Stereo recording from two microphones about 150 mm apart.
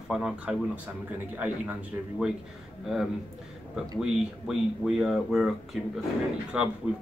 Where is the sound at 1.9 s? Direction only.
15° right (ahead or behind).